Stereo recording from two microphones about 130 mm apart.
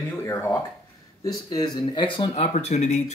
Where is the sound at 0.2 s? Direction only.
20° left (ahead or behind).